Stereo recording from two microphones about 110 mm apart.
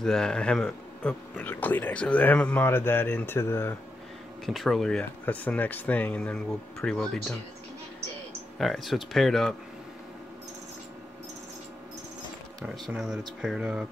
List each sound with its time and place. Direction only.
0.0 s speech: 5° left (ahead or behind); by 3.7 s 20° left (ahead or behind)
4.5 s speech: centre (ahead or behind)
8.5 s speech: centre (ahead or behind)
12.6 s speech: 5° right (ahead or behind)